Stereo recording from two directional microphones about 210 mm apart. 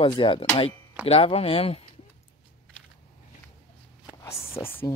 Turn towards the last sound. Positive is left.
turn(degrees=10)  # may be behind; listen again after turning